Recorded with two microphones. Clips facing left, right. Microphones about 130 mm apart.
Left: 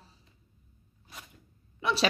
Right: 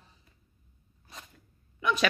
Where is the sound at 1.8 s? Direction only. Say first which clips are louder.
Even; 35° left (ahead or behind).